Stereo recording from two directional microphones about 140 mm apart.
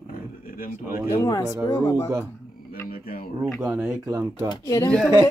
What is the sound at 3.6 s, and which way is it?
Speech, 15° right (ahead or behind).